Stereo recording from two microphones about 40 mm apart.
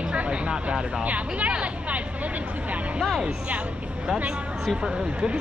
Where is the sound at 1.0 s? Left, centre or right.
Right.